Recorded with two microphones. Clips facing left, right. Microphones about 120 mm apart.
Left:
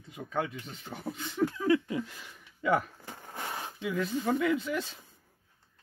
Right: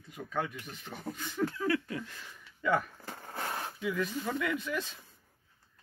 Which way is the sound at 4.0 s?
25° left (ahead or behind).